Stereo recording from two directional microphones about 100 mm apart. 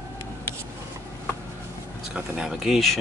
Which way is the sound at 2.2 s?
10° right (ahead or behind).